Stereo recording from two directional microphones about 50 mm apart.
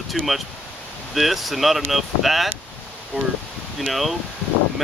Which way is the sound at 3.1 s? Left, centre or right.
Right.